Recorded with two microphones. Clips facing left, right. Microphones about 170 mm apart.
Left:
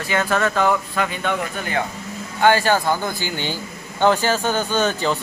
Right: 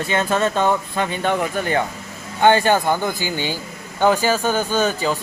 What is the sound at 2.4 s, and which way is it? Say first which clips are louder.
Speech: right 2 dB; 20° right (ahead or behind).